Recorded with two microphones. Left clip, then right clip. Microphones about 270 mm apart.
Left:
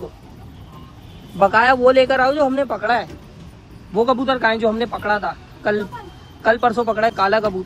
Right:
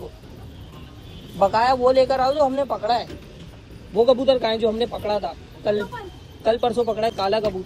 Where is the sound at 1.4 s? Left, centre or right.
Left.